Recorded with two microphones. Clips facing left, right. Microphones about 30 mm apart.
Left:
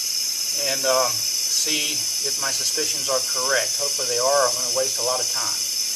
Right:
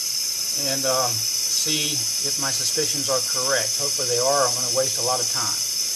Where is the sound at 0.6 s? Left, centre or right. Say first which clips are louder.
Left 2 dB; centre.